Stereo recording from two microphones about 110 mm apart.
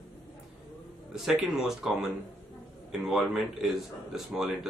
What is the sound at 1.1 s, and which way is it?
Speech, 5° right (ahead or behind).